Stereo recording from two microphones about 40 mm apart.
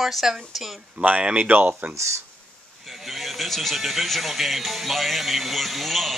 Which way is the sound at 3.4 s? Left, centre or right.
Centre.